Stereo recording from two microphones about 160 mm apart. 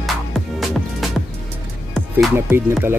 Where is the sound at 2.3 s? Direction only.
15° right (ahead or behind).